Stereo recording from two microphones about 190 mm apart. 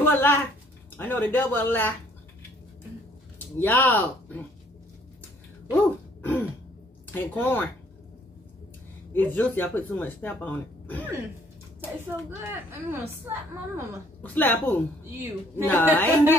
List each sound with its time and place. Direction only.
0.0 s a sound: 10° left (ahead or behind)
0.9 s speech: 10° left (ahead or behind)
3.5 s speech: 10° left (ahead or behind)
5.9 s throat clearing: 10° left (ahead or behind)
7.1 s speech: 10° left (ahead or behind)
9.1 s speech: 10° left (ahead or behind)
12.4 s a woman's voice: 10° right (ahead or behind)
14.2 s speech: 10° left (ahead or behind)